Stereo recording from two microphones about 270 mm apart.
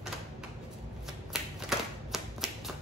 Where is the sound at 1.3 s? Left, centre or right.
Centre.